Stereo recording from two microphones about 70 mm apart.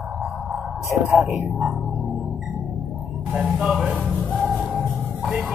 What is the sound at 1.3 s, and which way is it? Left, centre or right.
Speech, centre.